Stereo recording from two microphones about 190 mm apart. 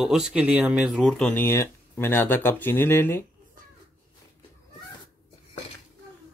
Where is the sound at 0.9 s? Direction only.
5° left (ahead or behind).